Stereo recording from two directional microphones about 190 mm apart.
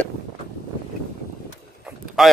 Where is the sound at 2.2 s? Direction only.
Centre (ahead or behind).